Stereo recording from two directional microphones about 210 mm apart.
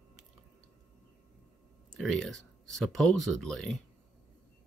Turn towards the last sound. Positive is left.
turn(degrees=0)  # may be behind; listen again after turning